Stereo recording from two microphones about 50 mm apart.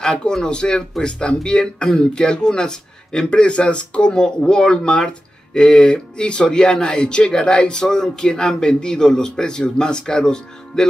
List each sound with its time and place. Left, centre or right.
0.0 s speech: centre